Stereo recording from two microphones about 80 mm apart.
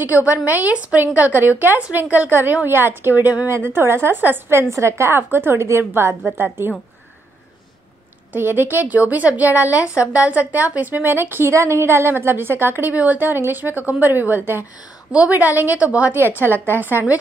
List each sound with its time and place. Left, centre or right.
0.1 s a woman's voice: left
0.5 s a woman's voice: centre
8.3 s a woman's voice: right